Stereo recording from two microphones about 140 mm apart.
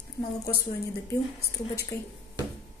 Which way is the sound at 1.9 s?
20° left (ahead or behind).